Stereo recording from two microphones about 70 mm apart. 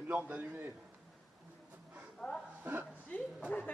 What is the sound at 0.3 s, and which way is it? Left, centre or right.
Speech, right.